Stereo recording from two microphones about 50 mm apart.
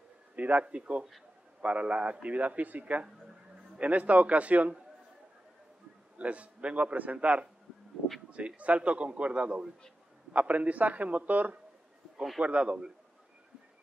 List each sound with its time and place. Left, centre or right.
0.4 s a man's voice: right
6.1 s a man's voice: right